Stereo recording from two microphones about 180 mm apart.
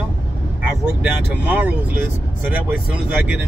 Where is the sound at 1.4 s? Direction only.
10° right (ahead or behind).